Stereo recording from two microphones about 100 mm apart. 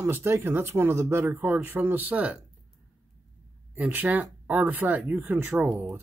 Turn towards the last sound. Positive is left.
turn(degrees=-20)  # may be behind; listen again after turning